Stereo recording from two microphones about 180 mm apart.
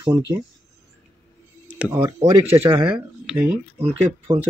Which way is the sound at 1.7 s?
10° right (ahead or behind).